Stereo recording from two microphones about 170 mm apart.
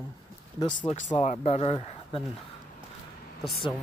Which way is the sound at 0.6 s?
25° left (ahead or behind).